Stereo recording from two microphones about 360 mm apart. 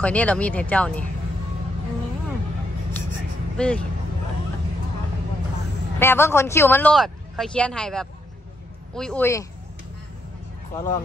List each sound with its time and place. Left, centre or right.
0.0 s speech: centre
3.5 s speech: centre
5.9 s speech: centre
10.7 s speech: centre